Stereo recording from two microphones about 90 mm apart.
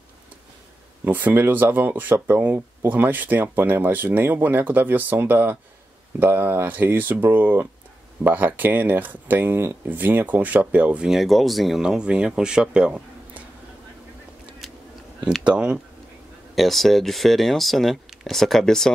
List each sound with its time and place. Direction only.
1.0 s speech: 20° right (ahead or behind)
14.6 s a sound: 5° left (ahead or behind)
15.4 s speech: 10° right (ahead or behind)
16.5 s speech: centre (ahead or behind)